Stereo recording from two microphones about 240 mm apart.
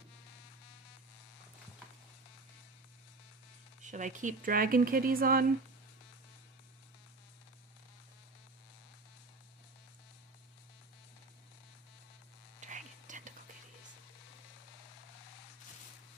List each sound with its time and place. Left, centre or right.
3.8 s speech: right
12.5 s whispering: right